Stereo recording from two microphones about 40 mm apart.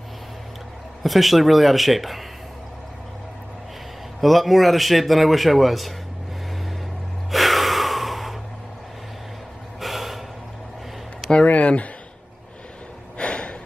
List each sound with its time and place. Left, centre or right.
1.0 s a man's voice: centre
4.2 s a man's voice: centre
7.2 s gasp: centre
9.8 s gasp: centre
11.4 s speech: left
13.2 s a sound: left